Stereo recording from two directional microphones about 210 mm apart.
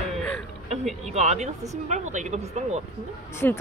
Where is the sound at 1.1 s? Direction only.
35° right (ahead or behind).